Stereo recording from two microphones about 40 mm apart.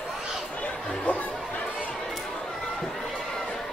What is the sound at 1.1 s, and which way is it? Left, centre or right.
Music, left.